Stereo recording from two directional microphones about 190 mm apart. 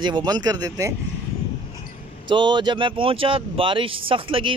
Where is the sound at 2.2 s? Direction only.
25° right (ahead or behind).